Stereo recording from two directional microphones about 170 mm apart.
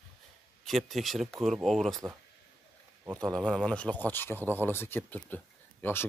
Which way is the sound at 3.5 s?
5° left (ahead or behind).